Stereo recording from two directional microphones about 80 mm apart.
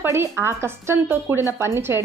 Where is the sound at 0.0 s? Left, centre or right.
Right.